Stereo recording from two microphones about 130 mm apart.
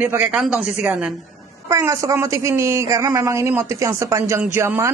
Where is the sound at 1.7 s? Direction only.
25° right (ahead or behind).